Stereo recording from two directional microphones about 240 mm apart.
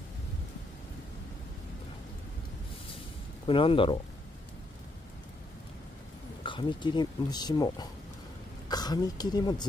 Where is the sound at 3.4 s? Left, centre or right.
Left.